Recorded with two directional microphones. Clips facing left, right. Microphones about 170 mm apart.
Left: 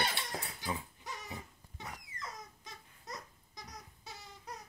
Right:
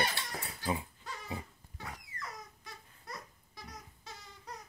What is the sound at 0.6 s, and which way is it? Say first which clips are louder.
Dog: right 5 dB; 15° left (ahead or behind).